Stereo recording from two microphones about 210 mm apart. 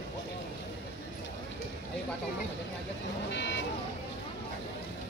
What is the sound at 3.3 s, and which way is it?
Speech, 55° left (ahead or behind).